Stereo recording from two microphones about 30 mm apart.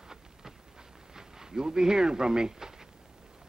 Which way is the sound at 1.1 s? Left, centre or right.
Right.